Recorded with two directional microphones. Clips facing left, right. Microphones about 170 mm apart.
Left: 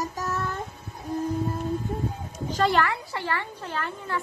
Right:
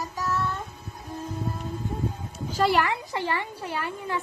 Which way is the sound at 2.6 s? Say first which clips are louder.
Even; 10° right (ahead or behind).